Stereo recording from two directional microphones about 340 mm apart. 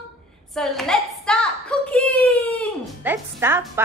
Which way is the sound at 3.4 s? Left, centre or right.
Centre.